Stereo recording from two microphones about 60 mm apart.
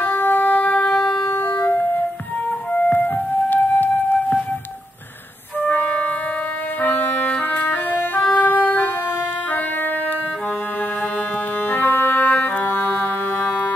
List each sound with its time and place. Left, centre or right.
0.0 s music: left
0.9 s wind instrument: centre
1.2 s music: left
2.9 s music: left
5.6 s music: left
8.3 s organ: left
11.7 s music: left